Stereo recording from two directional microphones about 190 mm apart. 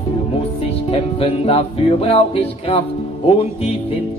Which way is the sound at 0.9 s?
30° left (ahead or behind).